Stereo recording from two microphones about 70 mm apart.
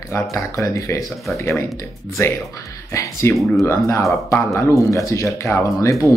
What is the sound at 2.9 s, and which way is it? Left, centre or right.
Speech, left.